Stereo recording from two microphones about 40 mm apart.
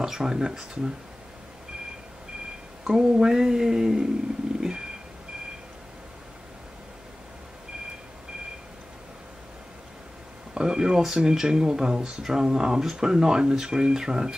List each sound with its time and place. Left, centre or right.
0.0 s speech: centre
2.8 s speech: centre
4.6 s a sound: centre
10.5 s speech: centre